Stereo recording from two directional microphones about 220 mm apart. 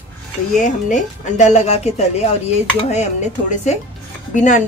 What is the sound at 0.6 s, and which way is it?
A woman's voice, 35° left (ahead or behind).